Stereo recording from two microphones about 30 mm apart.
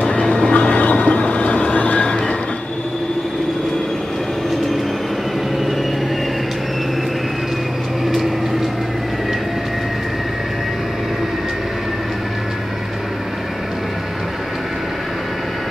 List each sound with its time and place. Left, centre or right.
0.1 s vehicle: left
0.6 s a sound: left
2.0 s train: left